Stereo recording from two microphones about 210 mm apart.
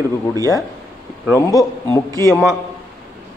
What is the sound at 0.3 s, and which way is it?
Speech, 15° right (ahead or behind).